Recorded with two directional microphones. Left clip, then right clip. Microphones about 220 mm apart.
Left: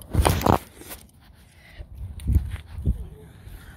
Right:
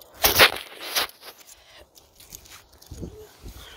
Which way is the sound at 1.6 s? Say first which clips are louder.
Even; 5° right (ahead or behind).